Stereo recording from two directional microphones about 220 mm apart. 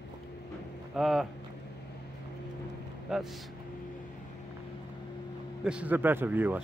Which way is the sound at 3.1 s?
5° right (ahead or behind).